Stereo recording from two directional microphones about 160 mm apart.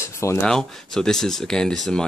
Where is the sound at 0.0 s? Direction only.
20° left (ahead or behind).